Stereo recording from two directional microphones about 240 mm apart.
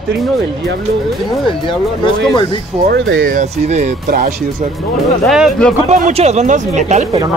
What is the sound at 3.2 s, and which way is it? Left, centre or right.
Speech, right.